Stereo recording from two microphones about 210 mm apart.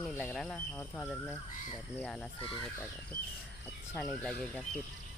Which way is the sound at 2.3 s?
25° left (ahead or behind).